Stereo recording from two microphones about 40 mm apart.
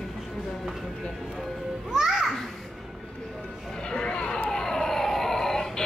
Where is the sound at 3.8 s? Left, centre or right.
Left.